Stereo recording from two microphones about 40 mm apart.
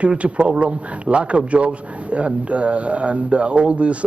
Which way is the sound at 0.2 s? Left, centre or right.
Right.